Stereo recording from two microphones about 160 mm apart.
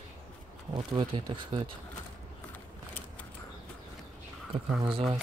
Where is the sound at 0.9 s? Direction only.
30° right (ahead or behind).